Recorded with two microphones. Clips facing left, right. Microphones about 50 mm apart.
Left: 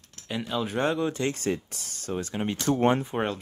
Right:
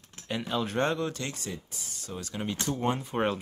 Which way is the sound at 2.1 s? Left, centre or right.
Left.